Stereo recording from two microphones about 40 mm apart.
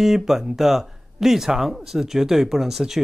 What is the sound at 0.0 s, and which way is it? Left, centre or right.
Speech, centre.